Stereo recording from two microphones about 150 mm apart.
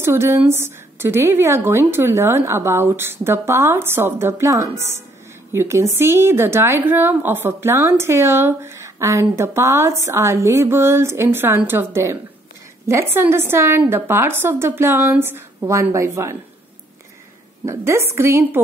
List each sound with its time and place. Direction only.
0.0 s a woman's voice: 15° right (ahead or behind)
17.6 s a woman's voice: 20° right (ahead or behind)